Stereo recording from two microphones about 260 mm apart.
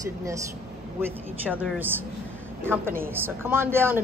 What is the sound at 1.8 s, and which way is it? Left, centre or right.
Speech, centre.